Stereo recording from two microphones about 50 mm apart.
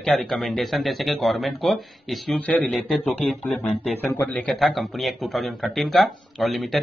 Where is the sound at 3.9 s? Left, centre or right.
Left.